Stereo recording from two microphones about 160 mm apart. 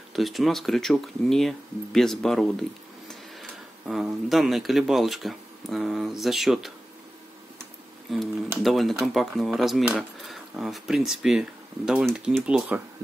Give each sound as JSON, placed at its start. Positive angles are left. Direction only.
{"t": 0.1, "sound": "speech", "side_deg": 0}
{"t": 8.1, "sound": "speech", "side_deg": 0}